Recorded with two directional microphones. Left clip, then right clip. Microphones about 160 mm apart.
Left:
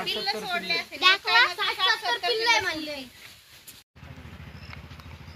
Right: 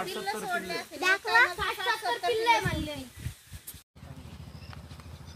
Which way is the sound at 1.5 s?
35° right (ahead or behind).